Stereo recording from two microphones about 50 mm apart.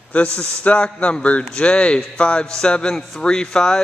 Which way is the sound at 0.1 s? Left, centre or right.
Left.